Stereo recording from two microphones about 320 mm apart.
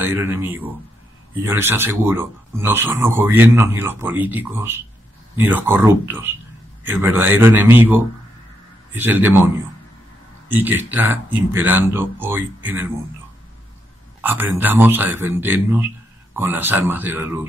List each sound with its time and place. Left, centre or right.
0.0 s speech: centre
10.5 s speech: centre
14.2 s speech: centre